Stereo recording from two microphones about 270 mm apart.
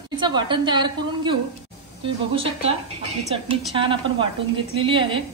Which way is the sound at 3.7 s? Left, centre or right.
Centre.